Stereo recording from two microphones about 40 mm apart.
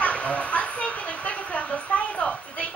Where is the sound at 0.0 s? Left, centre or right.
Left.